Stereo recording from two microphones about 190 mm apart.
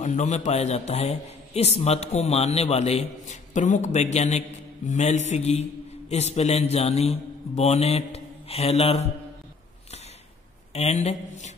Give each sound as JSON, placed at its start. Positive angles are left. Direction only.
{"t": 0.0, "sound": "a man's voice", "side_deg": 40}
{"t": 10.7, "sound": "a man's voice", "side_deg": 35}